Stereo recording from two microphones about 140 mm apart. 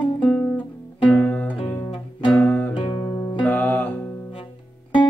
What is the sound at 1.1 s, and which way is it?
Music, 10° left (ahead or behind).